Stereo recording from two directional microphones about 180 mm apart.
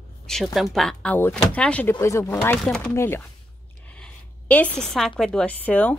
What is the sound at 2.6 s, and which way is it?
A woman's voice, 5° left (ahead or behind).